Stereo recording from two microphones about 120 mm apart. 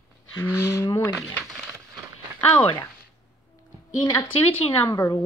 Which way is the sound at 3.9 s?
35° left (ahead or behind).